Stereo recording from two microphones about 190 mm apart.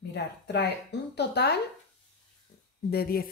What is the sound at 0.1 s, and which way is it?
Speech, 65° left (ahead or behind).